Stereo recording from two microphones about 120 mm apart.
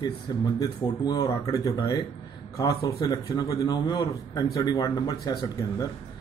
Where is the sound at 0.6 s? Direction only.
35° left (ahead or behind).